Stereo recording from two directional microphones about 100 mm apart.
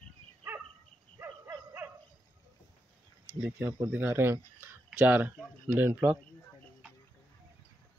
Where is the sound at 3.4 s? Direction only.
25° right (ahead or behind).